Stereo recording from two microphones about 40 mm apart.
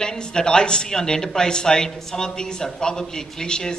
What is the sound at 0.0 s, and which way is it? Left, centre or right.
A man's voice, centre.